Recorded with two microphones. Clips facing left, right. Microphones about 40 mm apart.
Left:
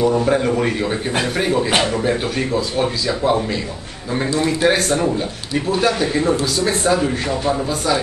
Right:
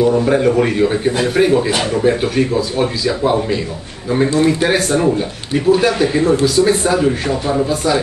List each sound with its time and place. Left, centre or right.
0.0 s a man's voice: centre
4.4 s a man's voice: centre
4.6 s a man's voice: centre